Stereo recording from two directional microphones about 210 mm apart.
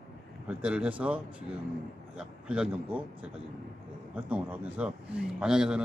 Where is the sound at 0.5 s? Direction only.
5° right (ahead or behind).